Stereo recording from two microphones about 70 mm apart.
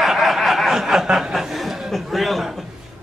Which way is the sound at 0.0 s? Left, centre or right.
Centre.